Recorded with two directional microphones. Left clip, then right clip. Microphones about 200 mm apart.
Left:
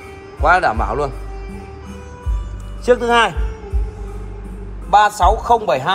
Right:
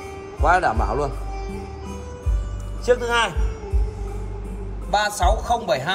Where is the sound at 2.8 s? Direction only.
5° right (ahead or behind).